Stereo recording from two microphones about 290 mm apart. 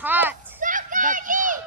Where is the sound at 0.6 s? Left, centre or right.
Right.